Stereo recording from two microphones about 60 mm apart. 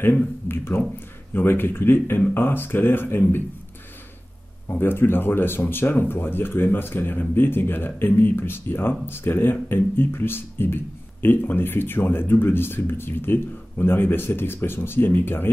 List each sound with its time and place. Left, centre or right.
0.0 s speech: left
4.6 s speech: left